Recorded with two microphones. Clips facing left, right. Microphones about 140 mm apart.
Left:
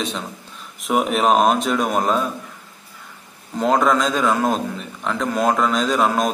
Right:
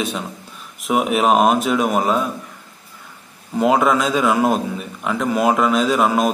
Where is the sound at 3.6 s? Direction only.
5° right (ahead or behind).